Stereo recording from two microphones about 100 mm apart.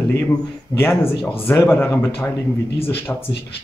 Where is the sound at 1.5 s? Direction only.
20° left (ahead or behind).